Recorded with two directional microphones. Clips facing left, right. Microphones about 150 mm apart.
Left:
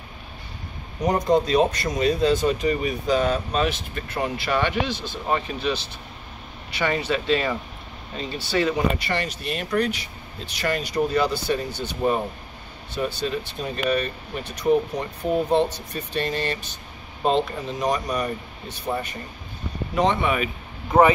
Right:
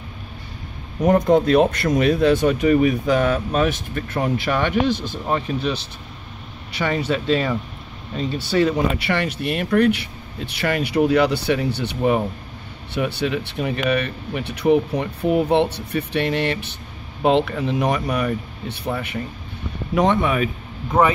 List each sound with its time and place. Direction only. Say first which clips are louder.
1.0 s speech: right 5 dB; 55° right (ahead or behind)
5.2 s speech: right 1 dB; centre (ahead or behind)
6.8 s speech: right 2 dB; 5° left (ahead or behind)
8.5 s speech: right 4 dB; centre (ahead or behind)
8.9 s speech: right 4 dB; 60° right (ahead or behind)
19.9 s speech: right 3 dB; 55° right (ahead or behind)